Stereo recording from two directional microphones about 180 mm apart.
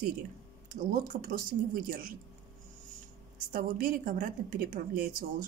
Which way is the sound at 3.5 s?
50° right (ahead or behind).